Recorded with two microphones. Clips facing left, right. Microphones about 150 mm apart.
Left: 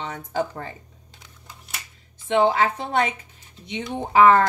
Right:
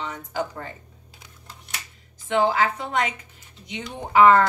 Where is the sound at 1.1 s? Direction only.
10° right (ahead or behind).